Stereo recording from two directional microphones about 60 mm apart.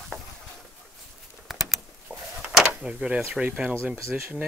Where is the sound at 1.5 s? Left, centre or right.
Centre.